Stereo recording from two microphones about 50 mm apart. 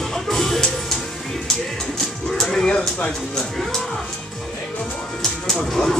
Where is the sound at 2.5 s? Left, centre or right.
Centre.